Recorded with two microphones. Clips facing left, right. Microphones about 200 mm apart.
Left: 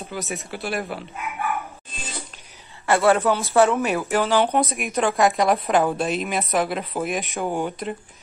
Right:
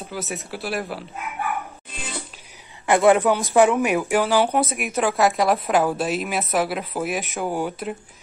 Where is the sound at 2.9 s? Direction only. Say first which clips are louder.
Right 2 dB; 15° right (ahead or behind).